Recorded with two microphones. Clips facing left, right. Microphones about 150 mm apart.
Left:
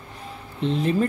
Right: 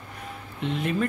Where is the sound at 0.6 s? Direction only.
35° left (ahead or behind).